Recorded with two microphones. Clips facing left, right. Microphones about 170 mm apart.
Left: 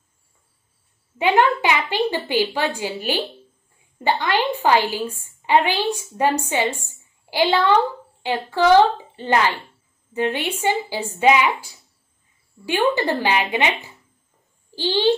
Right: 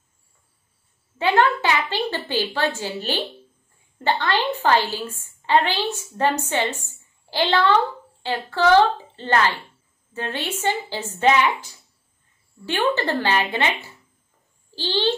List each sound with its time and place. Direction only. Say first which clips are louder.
1.1 s a woman's voice: left 1 dB; 15° left (ahead or behind)